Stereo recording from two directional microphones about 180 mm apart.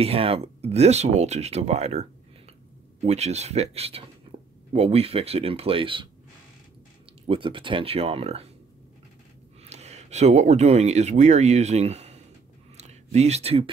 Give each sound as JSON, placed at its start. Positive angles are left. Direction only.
{"t": 0.0, "sound": "speech", "side_deg": -35}
{"t": 3.1, "sound": "speech", "side_deg": -40}
{"t": 4.3, "sound": "a sound", "side_deg": -30}
{"t": 4.7, "sound": "speech", "side_deg": -35}
{"t": 7.2, "sound": "speech", "side_deg": -30}
{"t": 9.7, "sound": "speech", "side_deg": -40}
{"t": 12.7, "sound": "a sound", "side_deg": -40}